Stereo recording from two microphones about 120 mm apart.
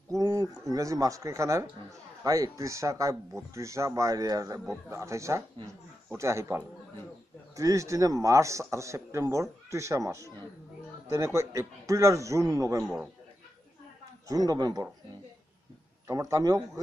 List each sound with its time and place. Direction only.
0.1 s a man's voice: 30° right (ahead or behind)
14.2 s a man's voice: 30° right (ahead or behind)
16.1 s a man's voice: 25° right (ahead or behind)